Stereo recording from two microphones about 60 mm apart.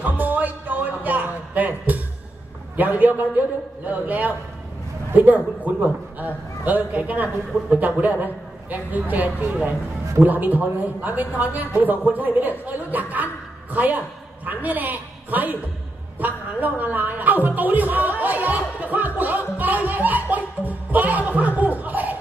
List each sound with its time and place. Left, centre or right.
0.0 s music: right
2.7 s a man's voice: right